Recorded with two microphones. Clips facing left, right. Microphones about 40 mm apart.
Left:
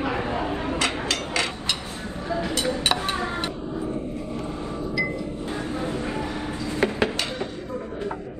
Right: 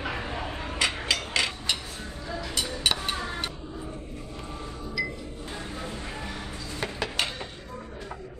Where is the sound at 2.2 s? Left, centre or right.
Left.